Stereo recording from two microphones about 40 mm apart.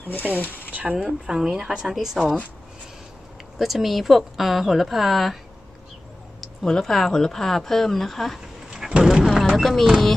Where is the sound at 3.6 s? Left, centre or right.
Centre.